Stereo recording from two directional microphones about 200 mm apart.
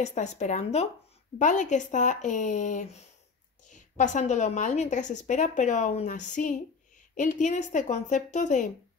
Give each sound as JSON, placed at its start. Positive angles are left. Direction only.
{"t": 0.0, "sound": "a woman's voice", "side_deg": 35}